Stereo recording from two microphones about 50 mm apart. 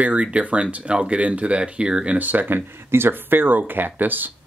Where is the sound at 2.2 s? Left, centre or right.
Right.